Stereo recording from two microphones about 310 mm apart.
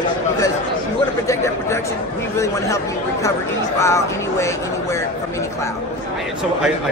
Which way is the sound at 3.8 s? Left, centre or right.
Centre.